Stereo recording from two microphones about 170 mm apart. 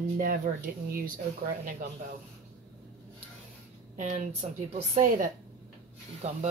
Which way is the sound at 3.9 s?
45° right (ahead or behind).